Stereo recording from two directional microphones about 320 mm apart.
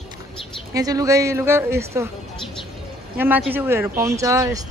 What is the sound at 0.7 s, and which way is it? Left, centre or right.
Speech, centre.